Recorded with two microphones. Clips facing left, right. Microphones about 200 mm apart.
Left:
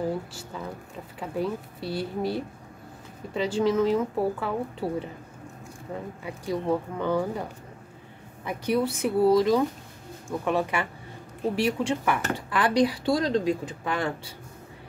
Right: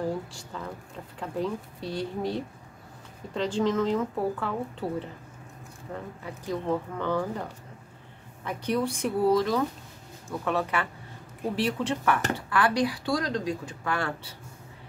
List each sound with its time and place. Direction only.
0.0 s a woman's voice: 5° left (ahead or behind)
6.2 s a woman's voice: 10° left (ahead or behind)
8.5 s a woman's voice: 10° left (ahead or behind)